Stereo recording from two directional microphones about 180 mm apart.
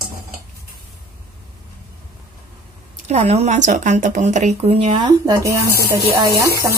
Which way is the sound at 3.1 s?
40° right (ahead or behind).